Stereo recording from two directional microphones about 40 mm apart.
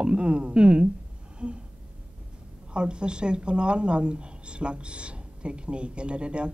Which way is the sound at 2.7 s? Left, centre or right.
Right.